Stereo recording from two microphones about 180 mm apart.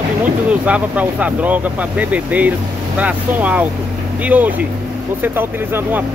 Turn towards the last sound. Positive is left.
turn(degrees=-10)  # may be behind; listen again after turning